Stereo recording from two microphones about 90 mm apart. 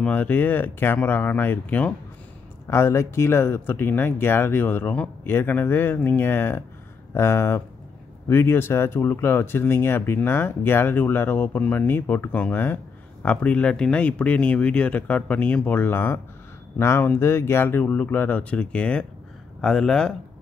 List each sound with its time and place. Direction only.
0.0 s speech: 15° left (ahead or behind)
2.7 s speech: 30° left (ahead or behind); by 20.2 s 10° left (ahead or behind)